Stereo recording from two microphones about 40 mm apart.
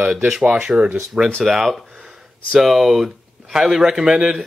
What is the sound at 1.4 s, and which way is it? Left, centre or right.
Speech, centre.